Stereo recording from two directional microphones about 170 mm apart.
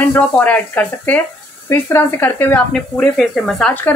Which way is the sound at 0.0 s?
10° left (ahead or behind).